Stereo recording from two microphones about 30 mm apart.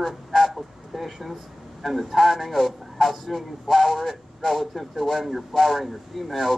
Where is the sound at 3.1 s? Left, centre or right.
Centre.